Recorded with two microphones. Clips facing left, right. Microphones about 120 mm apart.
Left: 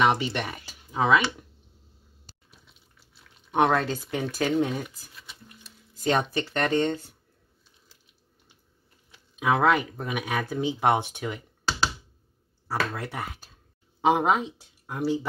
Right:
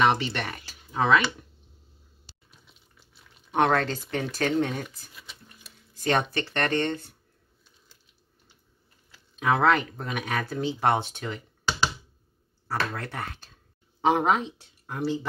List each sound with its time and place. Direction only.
0.0 s speech: 10° left (ahead or behind)
2.3 s a sound: 50° left (ahead or behind)
3.5 s speech: 10° left (ahead or behind)
6.3 s speech: 10° left (ahead or behind)
9.1 s speech: 10° left (ahead or behind)
12.6 s speech: 10° left (ahead or behind)